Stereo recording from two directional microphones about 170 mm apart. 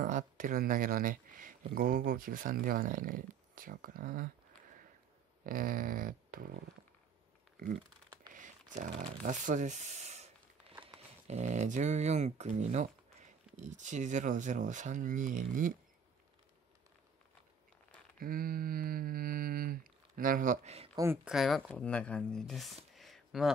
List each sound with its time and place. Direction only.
0.0 s speech: 50° right (ahead or behind)
5.4 s speech: 55° right (ahead or behind)
8.3 s a sound: 50° right (ahead or behind)
11.2 s speech: 40° right (ahead or behind)
18.2 s speech: 55° right (ahead or behind); by 20.9 s 40° right (ahead or behind)
20.9 s speech: 15° right (ahead or behind)
21.2 s speech: centre (ahead or behind)
22.9 s a sound: centre (ahead or behind)